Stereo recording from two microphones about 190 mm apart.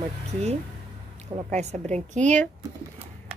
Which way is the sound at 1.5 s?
35° right (ahead or behind).